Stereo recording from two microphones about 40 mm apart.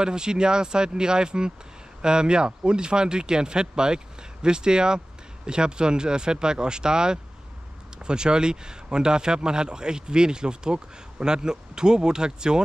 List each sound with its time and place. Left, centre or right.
0.0 s a man's voice: right